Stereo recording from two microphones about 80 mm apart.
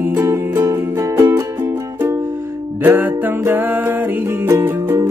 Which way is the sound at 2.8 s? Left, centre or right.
Right.